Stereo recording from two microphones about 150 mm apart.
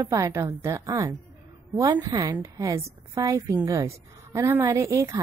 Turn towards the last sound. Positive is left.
turn(degrees=-20)  # may be behind; listen again after turning